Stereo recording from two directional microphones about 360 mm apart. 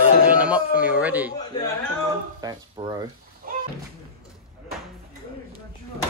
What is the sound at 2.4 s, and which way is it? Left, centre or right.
Speech, centre.